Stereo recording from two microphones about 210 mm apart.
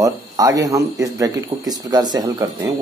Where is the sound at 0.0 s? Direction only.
15° right (ahead or behind).